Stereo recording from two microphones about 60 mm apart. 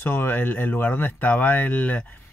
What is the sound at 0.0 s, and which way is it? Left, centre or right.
Speech, left.